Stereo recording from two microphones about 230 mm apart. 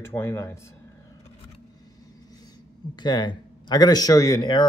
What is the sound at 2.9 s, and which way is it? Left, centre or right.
Speech, centre.